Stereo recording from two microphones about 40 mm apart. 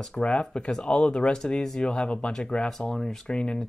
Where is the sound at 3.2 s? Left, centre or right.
Left.